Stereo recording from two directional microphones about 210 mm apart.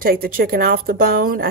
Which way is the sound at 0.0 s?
45° right (ahead or behind).